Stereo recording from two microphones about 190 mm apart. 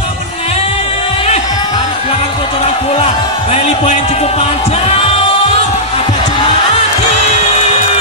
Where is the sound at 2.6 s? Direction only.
30° left (ahead or behind).